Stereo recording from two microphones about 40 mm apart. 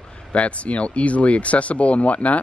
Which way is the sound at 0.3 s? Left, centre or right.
Left.